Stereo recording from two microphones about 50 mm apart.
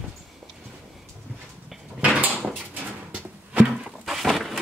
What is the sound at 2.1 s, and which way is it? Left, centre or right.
Dog, right.